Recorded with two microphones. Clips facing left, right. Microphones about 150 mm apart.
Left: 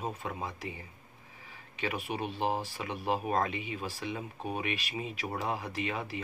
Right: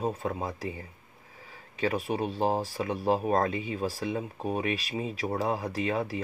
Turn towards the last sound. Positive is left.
turn(degrees=-35)  # may be behind; listen again after turning